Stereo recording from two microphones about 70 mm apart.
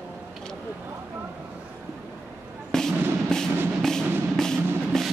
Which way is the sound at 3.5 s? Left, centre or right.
Right.